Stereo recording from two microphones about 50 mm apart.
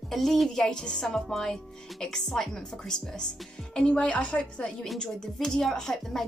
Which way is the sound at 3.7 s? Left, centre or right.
Left.